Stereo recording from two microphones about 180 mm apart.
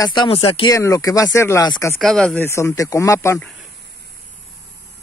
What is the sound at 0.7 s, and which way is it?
A man's voice, 20° left (ahead or behind).